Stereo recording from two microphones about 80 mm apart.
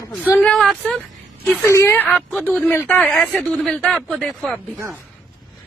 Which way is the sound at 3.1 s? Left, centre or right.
Centre.